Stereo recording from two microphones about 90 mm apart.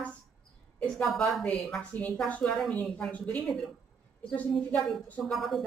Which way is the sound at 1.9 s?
20° left (ahead or behind).